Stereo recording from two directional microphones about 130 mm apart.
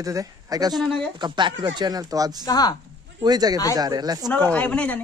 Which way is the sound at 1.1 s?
35° right (ahead or behind).